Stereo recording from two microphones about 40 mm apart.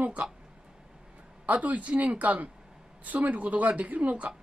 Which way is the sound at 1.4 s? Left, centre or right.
Right.